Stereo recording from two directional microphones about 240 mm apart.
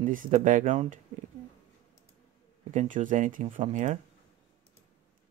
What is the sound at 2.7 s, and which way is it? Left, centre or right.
Speech, right.